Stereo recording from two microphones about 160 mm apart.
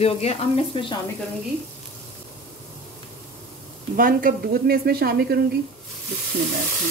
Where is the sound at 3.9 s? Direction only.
60° right (ahead or behind); by 5.3 s 75° right (ahead or behind).